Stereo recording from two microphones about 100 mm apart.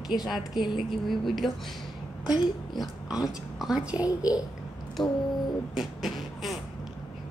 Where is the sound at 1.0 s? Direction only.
Centre (ahead or behind).